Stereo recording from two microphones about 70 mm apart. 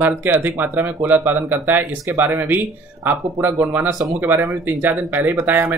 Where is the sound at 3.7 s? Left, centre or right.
Right.